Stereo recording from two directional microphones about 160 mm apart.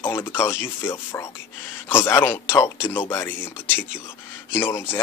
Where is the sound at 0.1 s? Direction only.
15° left (ahead or behind).